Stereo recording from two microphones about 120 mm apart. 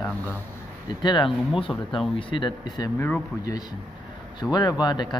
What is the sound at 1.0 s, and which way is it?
Speech, 40° left (ahead or behind).